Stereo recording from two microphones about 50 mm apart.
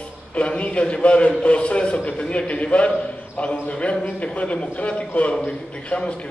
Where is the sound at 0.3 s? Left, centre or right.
Left.